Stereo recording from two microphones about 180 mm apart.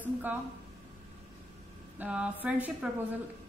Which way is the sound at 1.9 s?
5° right (ahead or behind).